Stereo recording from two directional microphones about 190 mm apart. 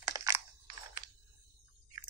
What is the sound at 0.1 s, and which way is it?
Crunch, 15° right (ahead or behind).